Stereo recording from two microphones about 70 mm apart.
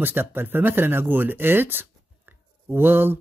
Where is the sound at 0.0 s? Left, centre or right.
Right.